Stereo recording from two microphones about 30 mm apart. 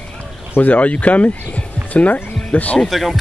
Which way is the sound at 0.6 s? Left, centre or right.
Left.